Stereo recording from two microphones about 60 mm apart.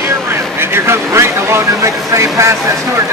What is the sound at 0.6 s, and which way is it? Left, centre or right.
Speech, right.